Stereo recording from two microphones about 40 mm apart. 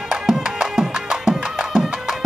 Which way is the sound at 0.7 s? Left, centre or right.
Centre.